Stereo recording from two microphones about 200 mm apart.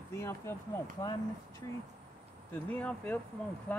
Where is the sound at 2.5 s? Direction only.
10° left (ahead or behind).